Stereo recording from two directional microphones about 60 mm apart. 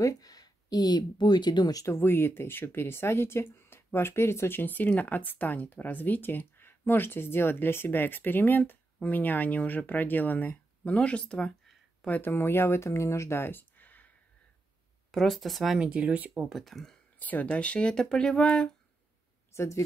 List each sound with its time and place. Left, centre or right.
0.0 s a sound: left
1.9 s speech: left; by 11.3 s centre
12.1 s speech: left
15.0 s speech: centre
15.8 s speech: centre
16.4 s speech: centre
17.2 s speech: left
19.5 s speech: left